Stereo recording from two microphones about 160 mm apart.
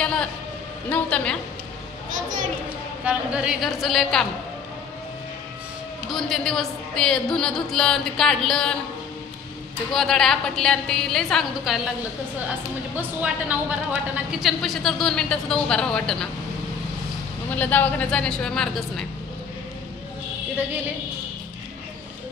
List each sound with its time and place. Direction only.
0.0 s a sound: 5° left (ahead or behind)
0.8 s speech: 10° left (ahead or behind)
2.0 s a child's voice: 55° right (ahead or behind)
3.1 s speech: 5° right (ahead or behind)
6.0 s speech: centre (ahead or behind)
9.9 s speech: centre (ahead or behind)
12.9 s speech: 10° right (ahead or behind)
17.5 s speech: 10° left (ahead or behind)